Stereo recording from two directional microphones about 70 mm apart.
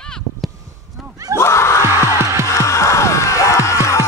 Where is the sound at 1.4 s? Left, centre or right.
Left.